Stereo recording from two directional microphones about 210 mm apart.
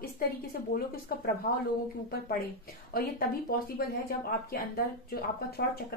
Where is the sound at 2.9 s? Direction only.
45° left (ahead or behind).